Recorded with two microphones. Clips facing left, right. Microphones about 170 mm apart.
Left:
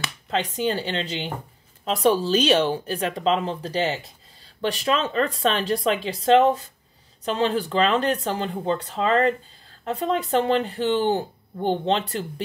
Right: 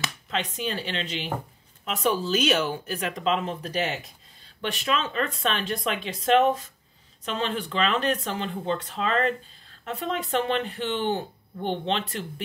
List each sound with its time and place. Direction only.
0.3 s speech: 30° left (ahead or behind)